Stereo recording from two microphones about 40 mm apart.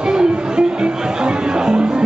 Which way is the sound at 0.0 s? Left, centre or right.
Centre.